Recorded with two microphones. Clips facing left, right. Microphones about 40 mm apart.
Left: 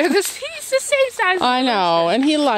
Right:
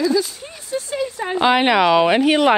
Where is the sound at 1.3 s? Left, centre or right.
Right.